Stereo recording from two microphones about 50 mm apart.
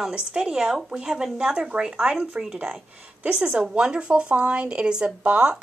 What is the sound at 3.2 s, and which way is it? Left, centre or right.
A woman's voice, right.